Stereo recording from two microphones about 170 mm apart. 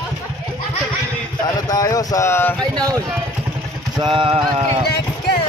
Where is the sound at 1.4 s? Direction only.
20° left (ahead or behind).